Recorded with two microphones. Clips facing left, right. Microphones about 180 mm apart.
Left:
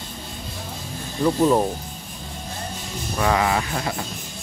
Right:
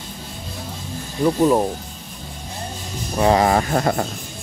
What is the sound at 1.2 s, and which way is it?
Speech, 10° right (ahead or behind).